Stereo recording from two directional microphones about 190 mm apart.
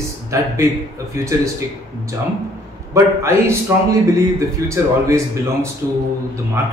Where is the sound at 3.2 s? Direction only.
15° right (ahead or behind).